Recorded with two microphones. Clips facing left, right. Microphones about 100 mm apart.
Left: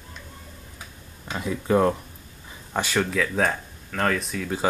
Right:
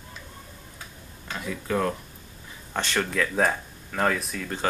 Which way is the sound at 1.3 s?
20° left (ahead or behind).